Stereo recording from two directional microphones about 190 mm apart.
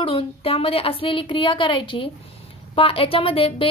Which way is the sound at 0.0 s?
30° left (ahead or behind).